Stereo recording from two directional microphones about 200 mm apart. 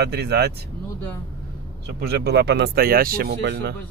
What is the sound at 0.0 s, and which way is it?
Speech, 55° right (ahead or behind).